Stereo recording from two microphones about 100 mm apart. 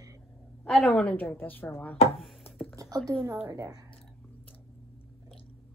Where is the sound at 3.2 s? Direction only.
30° right (ahead or behind).